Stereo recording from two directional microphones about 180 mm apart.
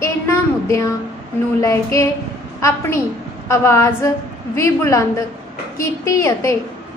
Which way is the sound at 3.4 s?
15° left (ahead or behind).